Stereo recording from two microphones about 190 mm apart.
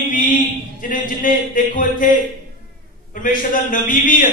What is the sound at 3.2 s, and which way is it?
A man's voice, 45° left (ahead or behind).